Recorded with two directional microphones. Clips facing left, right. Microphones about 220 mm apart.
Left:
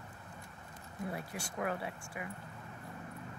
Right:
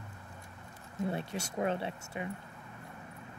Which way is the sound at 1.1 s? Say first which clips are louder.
Right 5 dB; 25° right (ahead or behind).